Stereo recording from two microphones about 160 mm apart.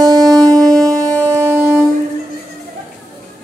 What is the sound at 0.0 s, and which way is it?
Music, 25° right (ahead or behind).